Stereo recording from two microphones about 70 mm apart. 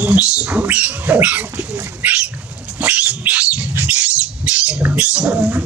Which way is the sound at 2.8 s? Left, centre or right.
Right.